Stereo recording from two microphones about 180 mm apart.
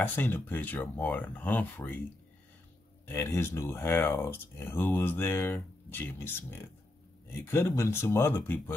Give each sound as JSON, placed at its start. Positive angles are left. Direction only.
{"t": 0.0, "sound": "speech", "side_deg": 10}
{"t": 3.1, "sound": "speech", "side_deg": 15}